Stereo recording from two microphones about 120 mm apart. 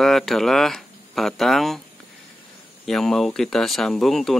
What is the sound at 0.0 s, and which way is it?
Speech, centre (ahead or behind).